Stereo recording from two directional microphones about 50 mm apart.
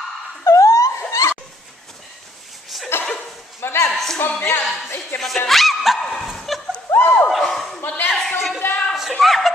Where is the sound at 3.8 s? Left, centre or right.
Centre.